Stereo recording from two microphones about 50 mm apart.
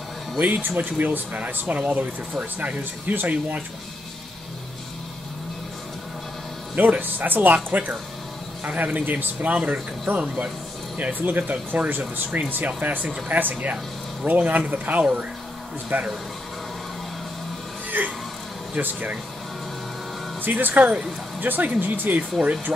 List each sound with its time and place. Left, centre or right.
0.4 s speech: right
6.7 s speech: right
18.0 s a sound: right
18.8 s speech: right
20.4 s speech: right